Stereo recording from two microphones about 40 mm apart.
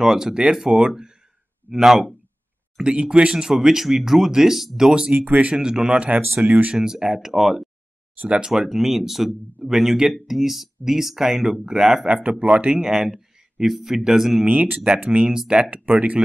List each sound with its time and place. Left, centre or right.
0.0 s speech: centre
4.8 s speech: right
5.1 s speech: right
5.5 s speech: centre
6.4 s speech: right
6.7 s speech: centre
12.1 s speech: right
12.7 s speech: centre
14.5 s speech: right
15.0 s speech: right
15.3 s speech: centre
15.6 s speech: right